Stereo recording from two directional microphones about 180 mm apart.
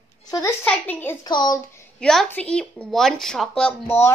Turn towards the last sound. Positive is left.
turn(degrees=10)  # may be behind; listen again after turning